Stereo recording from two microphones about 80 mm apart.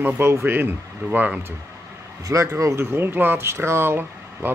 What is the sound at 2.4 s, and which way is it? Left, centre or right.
Speech, right.